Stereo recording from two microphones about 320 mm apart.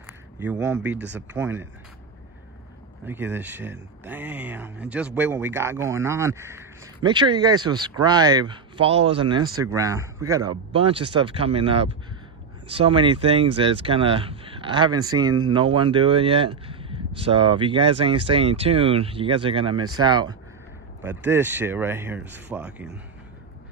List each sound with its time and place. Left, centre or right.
0.0 s a sound: centre
1.1 s speech: centre
3.1 s speech: centre